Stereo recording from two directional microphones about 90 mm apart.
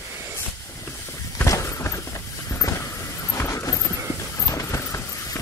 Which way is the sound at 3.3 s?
35° left (ahead or behind).